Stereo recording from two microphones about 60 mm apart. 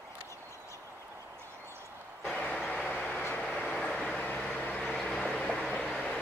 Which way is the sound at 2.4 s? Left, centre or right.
Centre.